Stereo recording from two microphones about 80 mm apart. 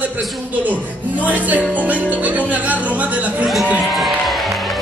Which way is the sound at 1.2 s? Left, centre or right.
Centre.